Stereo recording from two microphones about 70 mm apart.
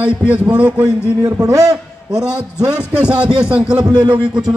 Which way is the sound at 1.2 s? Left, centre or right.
Right.